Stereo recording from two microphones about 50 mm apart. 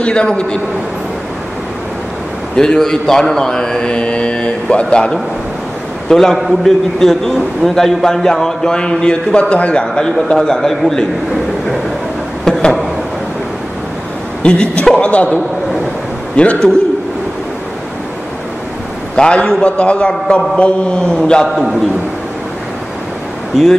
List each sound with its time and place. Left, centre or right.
0.0 s a man's voice: centre
2.5 s a man's voice: centre
6.3 s a man's voice: centre; by 9.8 s left
10.3 s a man's voice: centre
12.5 s a sound: centre
14.4 s a woman's voice: left
16.4 s a man's voice: left
19.1 s a man's voice: centre
23.5 s a man's voice: centre